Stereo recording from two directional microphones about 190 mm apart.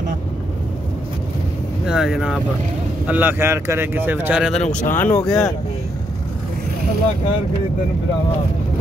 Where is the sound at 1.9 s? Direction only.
Centre (ahead or behind).